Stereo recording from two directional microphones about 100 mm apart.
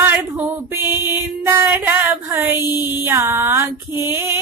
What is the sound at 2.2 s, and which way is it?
Female singing, 25° right (ahead or behind).